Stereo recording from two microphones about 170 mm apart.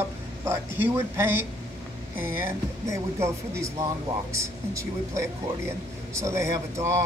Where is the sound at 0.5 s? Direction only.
15° right (ahead or behind).